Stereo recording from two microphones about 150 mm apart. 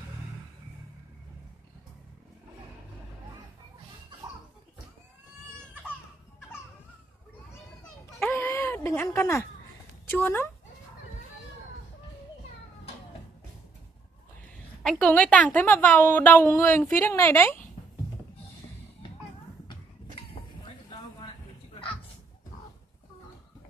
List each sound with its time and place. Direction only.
8.2 s a sound: 15° left (ahead or behind)
10.0 s speech: 15° left (ahead or behind)
14.8 s a woman's voice: 5° left (ahead or behind)